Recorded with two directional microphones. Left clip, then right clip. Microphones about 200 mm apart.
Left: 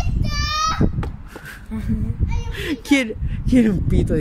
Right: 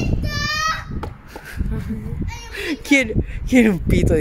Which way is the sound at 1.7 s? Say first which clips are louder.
Left 3 dB; 55° left (ahead or behind).